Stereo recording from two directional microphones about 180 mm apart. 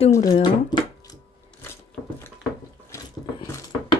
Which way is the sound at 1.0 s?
20° left (ahead or behind).